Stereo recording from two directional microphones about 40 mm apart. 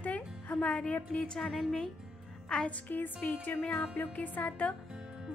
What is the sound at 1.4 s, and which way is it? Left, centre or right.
Speech, centre.